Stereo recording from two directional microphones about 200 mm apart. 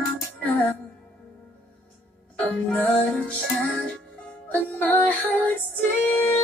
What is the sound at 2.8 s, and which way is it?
Music, 5° left (ahead or behind).